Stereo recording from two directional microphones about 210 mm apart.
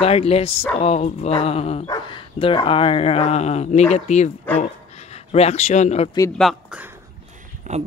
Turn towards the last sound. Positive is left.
turn(degrees=-35)  # may be behind; listen again after turning